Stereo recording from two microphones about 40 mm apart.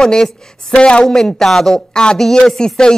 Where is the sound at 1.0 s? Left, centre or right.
Centre.